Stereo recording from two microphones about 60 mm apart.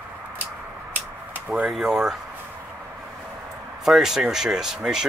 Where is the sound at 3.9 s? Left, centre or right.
Centre.